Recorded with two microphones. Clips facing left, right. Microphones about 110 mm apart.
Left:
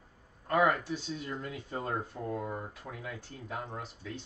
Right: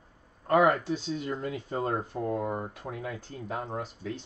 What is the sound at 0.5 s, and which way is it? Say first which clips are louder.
Speech: right 5 dB; 45° right (ahead or behind).